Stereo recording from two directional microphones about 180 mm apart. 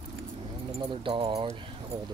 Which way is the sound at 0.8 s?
25° right (ahead or behind).